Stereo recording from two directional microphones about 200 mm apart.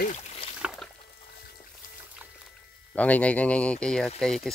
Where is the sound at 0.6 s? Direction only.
Centre (ahead or behind).